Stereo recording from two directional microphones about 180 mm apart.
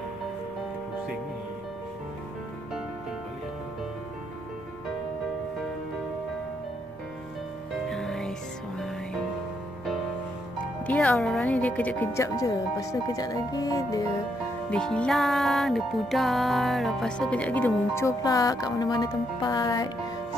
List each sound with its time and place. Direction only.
7.9 s music: centre (ahead or behind)
10.6 s speech: 5° left (ahead or behind)
14.7 s music: 5° left (ahead or behind); by 19.9 s 20° left (ahead or behind)